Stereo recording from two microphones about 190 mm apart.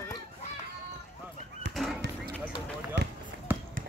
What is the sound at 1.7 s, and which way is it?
Horse, centre (ahead or behind).